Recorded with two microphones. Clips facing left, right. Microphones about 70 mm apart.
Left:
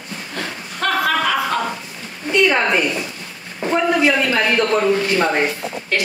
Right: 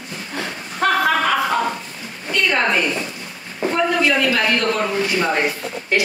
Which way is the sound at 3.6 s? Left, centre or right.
Centre.